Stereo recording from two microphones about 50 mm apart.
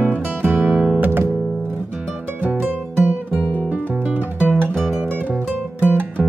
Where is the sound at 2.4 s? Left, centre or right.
Right.